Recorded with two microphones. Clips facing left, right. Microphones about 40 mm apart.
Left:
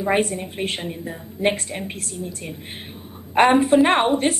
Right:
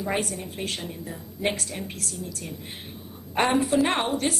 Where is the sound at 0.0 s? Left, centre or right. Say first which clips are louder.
Left 7 dB; left.